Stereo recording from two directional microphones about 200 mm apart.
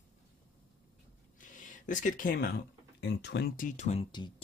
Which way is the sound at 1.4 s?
40° left (ahead or behind).